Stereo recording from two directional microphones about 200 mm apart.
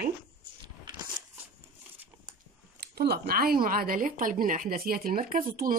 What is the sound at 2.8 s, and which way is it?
A woman's voice, 55° right (ahead or behind).